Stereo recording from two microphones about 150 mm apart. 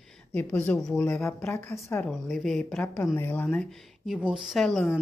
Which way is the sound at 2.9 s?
15° left (ahead or behind).